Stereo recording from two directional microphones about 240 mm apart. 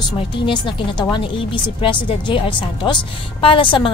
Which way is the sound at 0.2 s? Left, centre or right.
Centre.